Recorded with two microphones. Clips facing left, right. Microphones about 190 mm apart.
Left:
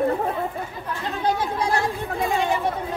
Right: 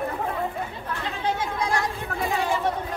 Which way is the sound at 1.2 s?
35° left (ahead or behind).